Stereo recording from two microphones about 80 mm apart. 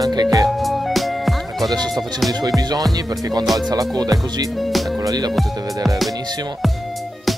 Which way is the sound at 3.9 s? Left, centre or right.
Right.